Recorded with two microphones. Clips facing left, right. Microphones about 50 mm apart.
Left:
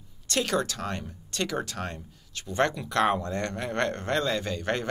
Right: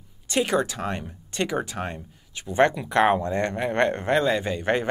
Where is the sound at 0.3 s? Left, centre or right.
Centre.